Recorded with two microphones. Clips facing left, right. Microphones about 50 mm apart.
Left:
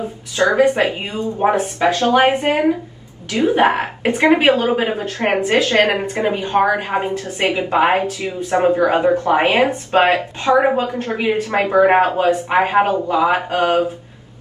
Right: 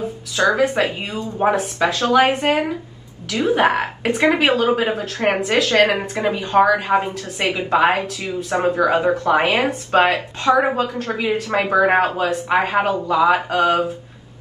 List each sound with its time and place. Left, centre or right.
0.4 s a woman's voice: left